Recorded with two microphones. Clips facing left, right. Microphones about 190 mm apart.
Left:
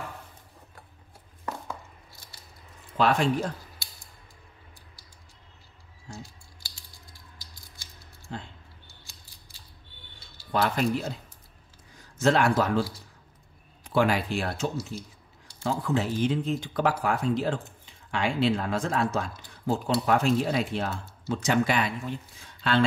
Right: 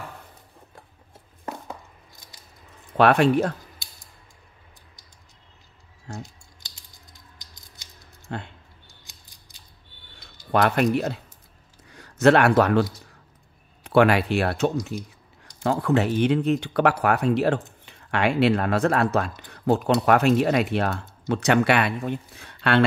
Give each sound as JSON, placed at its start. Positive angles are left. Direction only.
{"t": 1.4, "sound": "a sound", "side_deg": -20}
{"t": 3.0, "sound": "speech", "side_deg": -65}
{"t": 6.2, "sound": "typing", "side_deg": -20}
{"t": 8.3, "sound": "speech", "side_deg": -65}
{"t": 8.8, "sound": "scissors", "side_deg": -15}
{"t": 10.5, "sound": "speech", "side_deg": -65}
{"t": 13.8, "sound": "speech", "side_deg": -70}